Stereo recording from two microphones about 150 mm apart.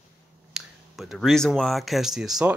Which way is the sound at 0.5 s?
Centre (ahead or behind).